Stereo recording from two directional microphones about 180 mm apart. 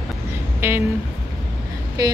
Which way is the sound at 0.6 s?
15° right (ahead or behind).